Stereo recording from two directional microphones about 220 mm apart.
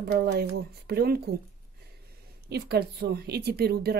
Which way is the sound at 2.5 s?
45° right (ahead or behind).